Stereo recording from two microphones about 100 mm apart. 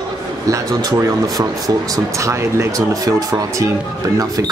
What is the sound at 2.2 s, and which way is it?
Speech, 30° right (ahead or behind).